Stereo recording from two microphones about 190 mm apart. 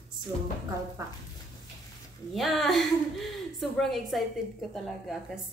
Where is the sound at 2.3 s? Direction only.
Centre (ahead or behind).